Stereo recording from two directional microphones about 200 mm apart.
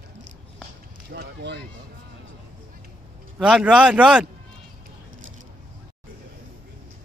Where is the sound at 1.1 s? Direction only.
55° right (ahead or behind).